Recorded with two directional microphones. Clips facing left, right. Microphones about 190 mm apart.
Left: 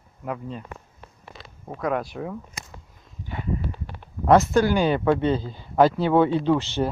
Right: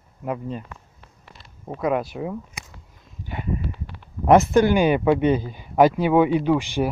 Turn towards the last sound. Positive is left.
turn(degrees=-15)  # may be behind; listen again after turning